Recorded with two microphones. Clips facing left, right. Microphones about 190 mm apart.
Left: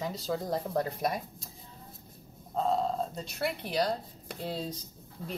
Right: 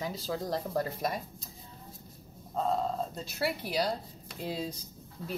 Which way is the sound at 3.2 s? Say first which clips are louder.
Right 1 dB; 5° right (ahead or behind).